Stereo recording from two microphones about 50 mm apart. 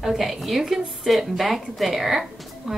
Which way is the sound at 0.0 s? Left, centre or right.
Centre.